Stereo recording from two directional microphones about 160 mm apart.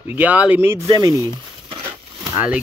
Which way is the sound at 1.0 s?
20° right (ahead or behind).